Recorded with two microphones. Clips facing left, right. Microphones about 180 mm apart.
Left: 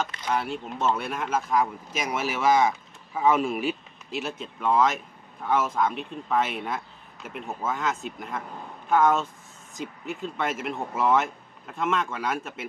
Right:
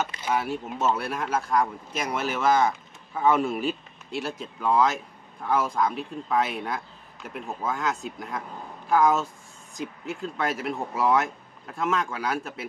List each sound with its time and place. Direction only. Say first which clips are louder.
0.0 s speech: right 1 dB; 5° right (ahead or behind)